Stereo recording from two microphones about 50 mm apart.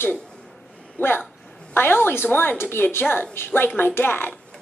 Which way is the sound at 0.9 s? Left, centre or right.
Left.